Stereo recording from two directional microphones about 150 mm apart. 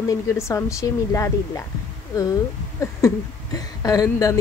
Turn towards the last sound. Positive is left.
turn(degrees=20)  # may be behind; listen again after turning